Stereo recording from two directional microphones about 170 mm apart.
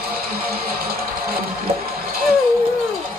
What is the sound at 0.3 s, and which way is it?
Music, 60° right (ahead or behind).